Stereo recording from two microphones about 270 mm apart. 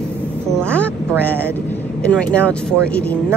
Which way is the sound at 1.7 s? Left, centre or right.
Centre.